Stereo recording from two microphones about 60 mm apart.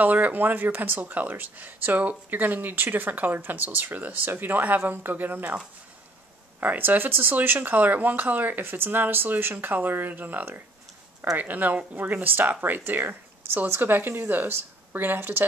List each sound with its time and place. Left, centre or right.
0.0 s speech: right
6.6 s speech: right